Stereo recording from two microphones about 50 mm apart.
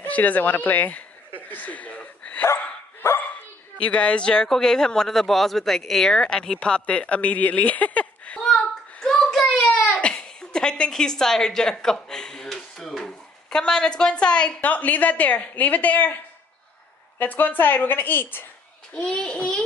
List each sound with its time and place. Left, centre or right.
0.0 s a woman's voice: left
1.5 s dog: left
2.4 s dog: left
3.9 s a child's voice: left
4.3 s speech: centre; by 8.4 s left
8.4 s a sound: centre
10.0 s a woman's voice: centre
11.8 s a sound: centre
13.0 s speech: centre
14.6 s a woman's voice: left
17.2 s a woman's voice: left
18.9 s a child's voice: left